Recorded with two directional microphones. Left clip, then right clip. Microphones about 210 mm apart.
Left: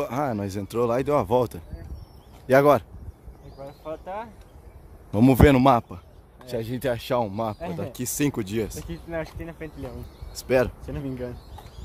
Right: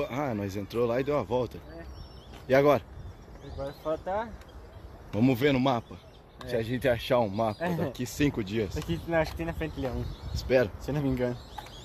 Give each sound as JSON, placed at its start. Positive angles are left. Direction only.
{"t": 0.0, "sound": "speech", "side_deg": 30}
{"t": 3.8, "sound": "speech", "side_deg": -20}
{"t": 5.1, "sound": "a man's voice", "side_deg": 40}
{"t": 6.4, "sound": "speech", "side_deg": 25}
{"t": 7.6, "sound": "speech", "side_deg": -25}
{"t": 7.9, "sound": "speech", "side_deg": 35}
{"t": 8.7, "sound": "speech", "side_deg": -35}
{"t": 10.3, "sound": "speech", "side_deg": 40}
{"t": 10.9, "sound": "speech", "side_deg": -35}